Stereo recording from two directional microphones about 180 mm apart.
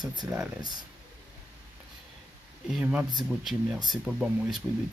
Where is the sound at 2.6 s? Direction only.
5° right (ahead or behind).